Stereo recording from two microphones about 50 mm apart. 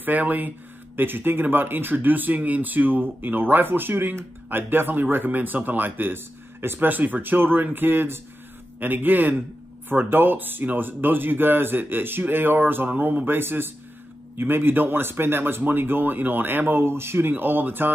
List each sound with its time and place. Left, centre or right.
0.0 s speech: right
6.9 s speech: right
17.3 s speech: right